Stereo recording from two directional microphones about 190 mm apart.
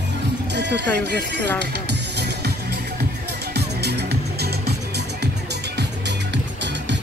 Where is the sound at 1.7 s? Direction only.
60° right (ahead or behind).